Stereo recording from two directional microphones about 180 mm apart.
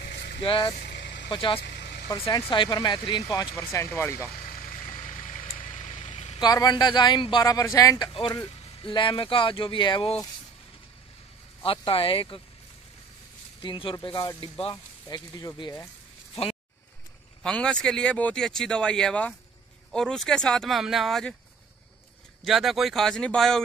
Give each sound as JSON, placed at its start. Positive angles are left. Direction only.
{"t": 0.4, "sound": "speech", "side_deg": 30}
{"t": 0.7, "sound": "vehicle", "side_deg": 70}
{"t": 1.3, "sound": "speech", "side_deg": 30}
{"t": 1.6, "sound": "vehicle", "side_deg": 65}
{"t": 2.1, "sound": "speech", "side_deg": 30}
{"t": 4.3, "sound": "vehicle", "side_deg": 55}
{"t": 6.4, "sound": "speech", "side_deg": 20}
{"t": 11.6, "sound": "speech", "side_deg": 30}
{"t": 13.6, "sound": "speech", "side_deg": 25}
{"t": 17.4, "sound": "speech", "side_deg": 5}
{"t": 22.4, "sound": "speech", "side_deg": 0}